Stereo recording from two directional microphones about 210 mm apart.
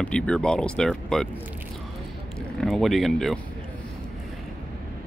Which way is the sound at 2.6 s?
Centre (ahead or behind).